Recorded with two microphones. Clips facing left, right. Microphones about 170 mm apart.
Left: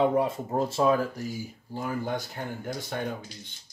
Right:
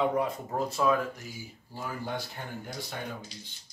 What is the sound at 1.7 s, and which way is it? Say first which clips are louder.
Speech: left 5 dB; 50° left (ahead or behind).